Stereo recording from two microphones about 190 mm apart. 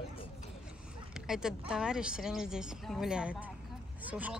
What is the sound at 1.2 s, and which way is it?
Speech, 5° right (ahead or behind).